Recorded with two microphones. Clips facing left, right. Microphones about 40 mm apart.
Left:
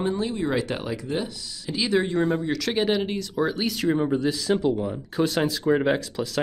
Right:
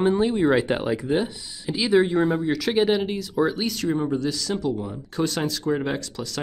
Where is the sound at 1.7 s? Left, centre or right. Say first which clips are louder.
Right 4 dB; centre; by 4.9 s left.